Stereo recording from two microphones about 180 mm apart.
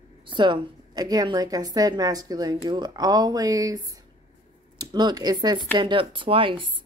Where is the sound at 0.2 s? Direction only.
25° right (ahead or behind).